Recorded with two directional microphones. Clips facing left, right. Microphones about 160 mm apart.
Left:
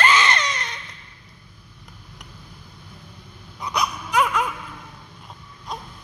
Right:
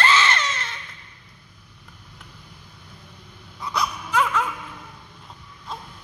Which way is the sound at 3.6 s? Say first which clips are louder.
Left 1 dB; 15° left (ahead or behind).